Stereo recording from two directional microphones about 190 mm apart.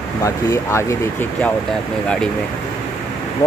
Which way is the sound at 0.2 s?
15° left (ahead or behind).